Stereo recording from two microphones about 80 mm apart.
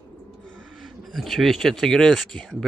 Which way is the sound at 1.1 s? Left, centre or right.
Centre.